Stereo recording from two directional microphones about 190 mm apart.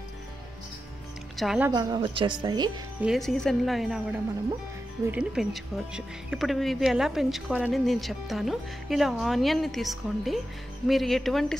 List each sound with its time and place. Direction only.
1.3 s a woman's voice: centre (ahead or behind)
1.7 s speech: 20° right (ahead or behind)
3.0 s speech: centre (ahead or behind)
5.0 s speech: 5° right (ahead or behind)